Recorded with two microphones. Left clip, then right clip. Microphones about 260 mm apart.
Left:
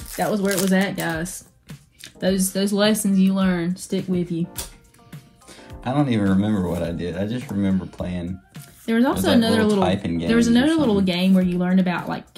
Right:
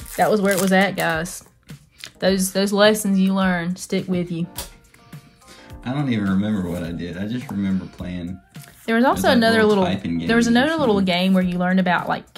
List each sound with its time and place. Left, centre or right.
0.2 s speech: right
5.1 s speech: centre
8.8 s speech: right
9.8 s speech: centre
10.2 s speech: right